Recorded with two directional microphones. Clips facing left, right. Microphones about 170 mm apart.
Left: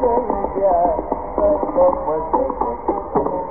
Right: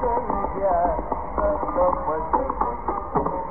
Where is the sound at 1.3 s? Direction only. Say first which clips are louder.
Left 7 dB; 30° left (ahead or behind).